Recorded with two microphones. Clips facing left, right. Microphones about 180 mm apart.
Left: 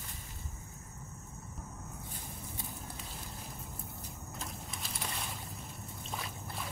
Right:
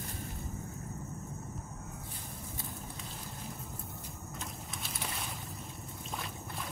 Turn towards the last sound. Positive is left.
turn(degrees=0)  # may be behind; listen again after turning